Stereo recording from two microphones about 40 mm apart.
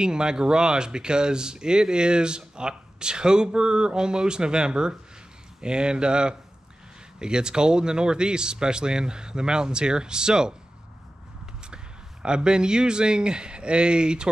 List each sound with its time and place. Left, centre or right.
0.0 s speech: right
11.7 s speech: right